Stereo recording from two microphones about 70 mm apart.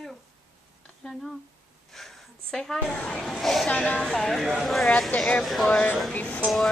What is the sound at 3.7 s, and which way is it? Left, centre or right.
A woman's voice, centre.